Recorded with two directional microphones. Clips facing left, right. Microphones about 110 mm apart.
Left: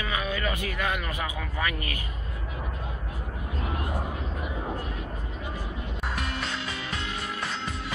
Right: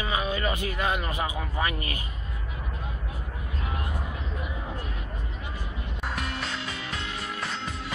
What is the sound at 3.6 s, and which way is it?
Vehicle, 40° left (ahead or behind).